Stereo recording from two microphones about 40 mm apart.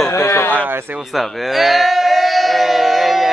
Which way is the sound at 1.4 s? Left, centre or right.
Centre.